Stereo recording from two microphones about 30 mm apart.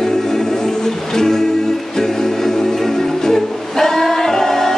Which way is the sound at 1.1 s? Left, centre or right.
Centre.